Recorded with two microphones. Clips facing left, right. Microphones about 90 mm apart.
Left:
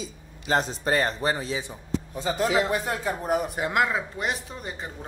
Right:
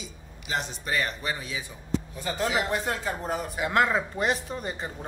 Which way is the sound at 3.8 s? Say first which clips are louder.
Right 2 dB; centre (ahead or behind).